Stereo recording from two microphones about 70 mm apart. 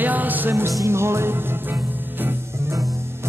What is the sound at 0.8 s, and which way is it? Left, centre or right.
Music, right.